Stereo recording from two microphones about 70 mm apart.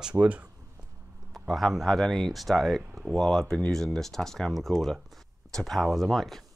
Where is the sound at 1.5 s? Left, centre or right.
Centre.